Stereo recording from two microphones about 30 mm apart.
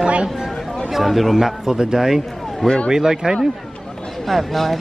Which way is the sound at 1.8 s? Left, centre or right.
Right.